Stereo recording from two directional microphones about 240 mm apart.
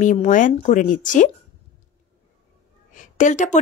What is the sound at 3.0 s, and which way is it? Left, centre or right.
Speech, left.